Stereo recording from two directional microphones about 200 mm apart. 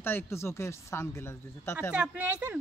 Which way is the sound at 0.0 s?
10° left (ahead or behind).